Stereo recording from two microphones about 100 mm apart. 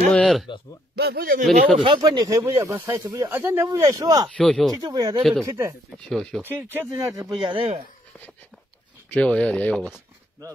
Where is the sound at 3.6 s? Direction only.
35° right (ahead or behind).